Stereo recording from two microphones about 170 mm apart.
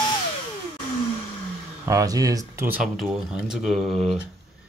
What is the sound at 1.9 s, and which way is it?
Speech, 20° right (ahead or behind).